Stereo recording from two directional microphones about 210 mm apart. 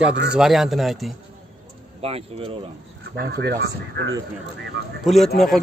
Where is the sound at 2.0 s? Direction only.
30° right (ahead or behind).